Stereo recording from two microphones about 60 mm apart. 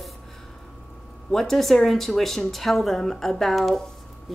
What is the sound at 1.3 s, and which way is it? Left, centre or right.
Speech, centre.